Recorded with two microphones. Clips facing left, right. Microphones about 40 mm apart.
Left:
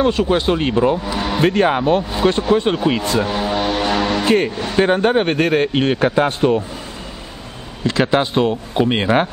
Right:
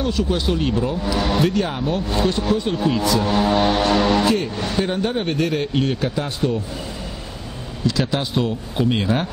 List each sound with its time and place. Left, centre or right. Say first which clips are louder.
0.0 s speech: left 6 dB; left
1.1 s vehicle: even; centre
1.4 s a man's voice: left 5 dB; left
2.9 s speech: left 1 dB; left
3.3 s vehicle: right 2 dB; centre
4.7 s a man's voice: left 8 dB; left
7.8 s speech: left 6 dB; left